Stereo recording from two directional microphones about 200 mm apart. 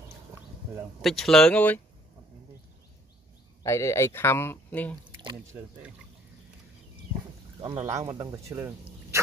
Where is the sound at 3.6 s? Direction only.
15° left (ahead or behind).